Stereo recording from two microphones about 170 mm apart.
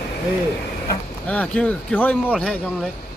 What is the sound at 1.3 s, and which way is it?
Speech, 10° left (ahead or behind).